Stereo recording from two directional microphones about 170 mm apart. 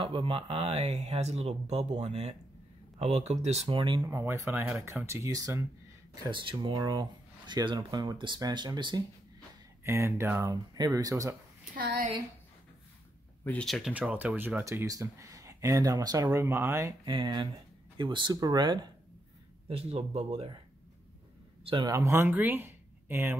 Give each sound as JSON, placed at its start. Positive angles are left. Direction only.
{"t": 0.0, "sound": "speech", "side_deg": -30}
{"t": 4.0, "sound": "speech", "side_deg": -15}
{"t": 11.7, "sound": "speech", "side_deg": -65}
{"t": 13.4, "sound": "speech", "side_deg": 5}
{"t": 17.1, "sound": "speech", "side_deg": -30}
{"t": 19.7, "sound": "speech", "side_deg": -35}
{"t": 21.6, "sound": "speech", "side_deg": -25}